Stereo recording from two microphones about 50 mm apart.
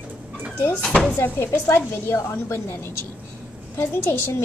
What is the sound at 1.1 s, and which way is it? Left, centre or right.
A child's voice, left.